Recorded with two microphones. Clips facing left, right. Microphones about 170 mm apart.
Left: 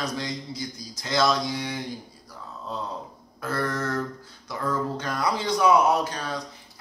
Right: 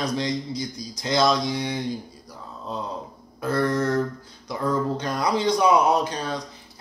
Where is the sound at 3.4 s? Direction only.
20° right (ahead or behind).